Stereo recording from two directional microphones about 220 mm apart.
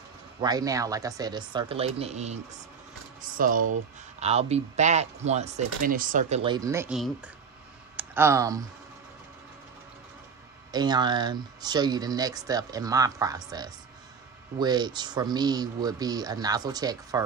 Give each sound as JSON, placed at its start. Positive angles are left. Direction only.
{"t": 0.4, "sound": "speech", "side_deg": -15}
{"t": 10.7, "sound": "speech", "side_deg": -20}